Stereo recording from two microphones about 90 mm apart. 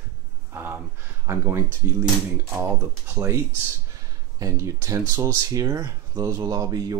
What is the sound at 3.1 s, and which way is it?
Speech, 30° right (ahead or behind).